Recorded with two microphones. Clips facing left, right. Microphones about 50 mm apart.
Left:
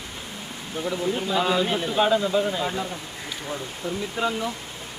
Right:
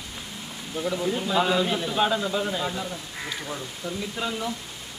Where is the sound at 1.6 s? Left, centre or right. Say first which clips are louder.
Left 1 dB; centre.